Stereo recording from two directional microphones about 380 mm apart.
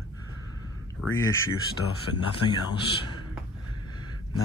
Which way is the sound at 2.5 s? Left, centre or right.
Centre.